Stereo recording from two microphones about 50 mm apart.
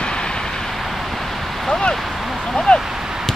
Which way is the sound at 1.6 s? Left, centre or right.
Centre.